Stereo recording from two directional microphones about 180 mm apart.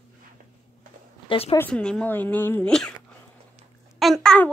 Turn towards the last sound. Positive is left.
turn(degrees=5)  # may be behind; listen again after turning